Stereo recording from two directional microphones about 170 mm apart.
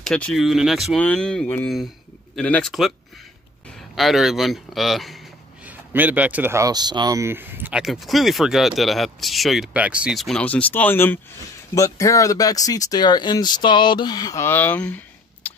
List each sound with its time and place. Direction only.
0.0 s speech: 5° left (ahead or behind)
3.9 s speech: centre (ahead or behind)
15.4 s a sound: 10° left (ahead or behind)